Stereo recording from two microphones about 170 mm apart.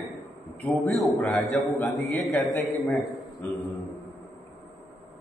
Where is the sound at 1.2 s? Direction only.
Centre (ahead or behind).